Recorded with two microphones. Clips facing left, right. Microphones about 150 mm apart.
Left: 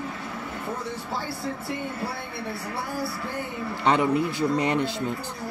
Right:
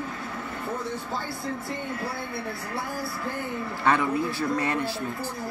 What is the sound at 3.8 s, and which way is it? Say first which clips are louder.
Speech: left 2 dB; 20° left (ahead or behind).